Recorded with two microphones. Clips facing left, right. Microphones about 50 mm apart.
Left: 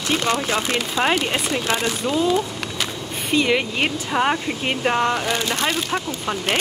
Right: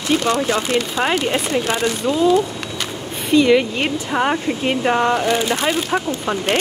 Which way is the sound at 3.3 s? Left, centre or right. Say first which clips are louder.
Right 6 dB; centre.